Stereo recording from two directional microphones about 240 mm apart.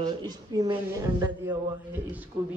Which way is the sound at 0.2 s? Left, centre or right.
Centre.